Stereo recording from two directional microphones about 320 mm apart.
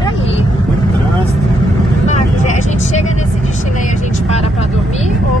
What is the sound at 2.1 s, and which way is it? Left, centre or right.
Speech, left.